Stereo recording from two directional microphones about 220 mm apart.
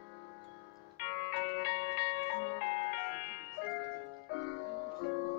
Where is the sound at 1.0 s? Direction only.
50° left (ahead or behind).